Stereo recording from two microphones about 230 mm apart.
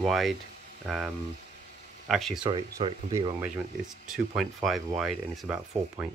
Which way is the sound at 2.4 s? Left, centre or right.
Right.